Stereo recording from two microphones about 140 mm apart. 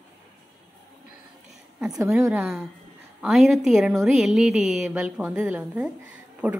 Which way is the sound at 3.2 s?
Centre (ahead or behind).